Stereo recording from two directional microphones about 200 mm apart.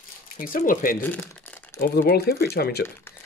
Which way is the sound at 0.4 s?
45° left (ahead or behind).